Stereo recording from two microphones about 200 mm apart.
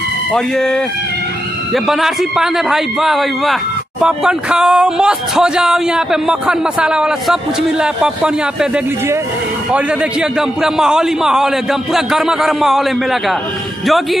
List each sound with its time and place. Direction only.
0.3 s a man's voice: 5° left (ahead or behind)